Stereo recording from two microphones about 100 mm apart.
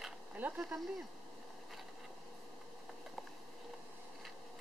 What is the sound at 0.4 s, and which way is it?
Speech, 15° right (ahead or behind).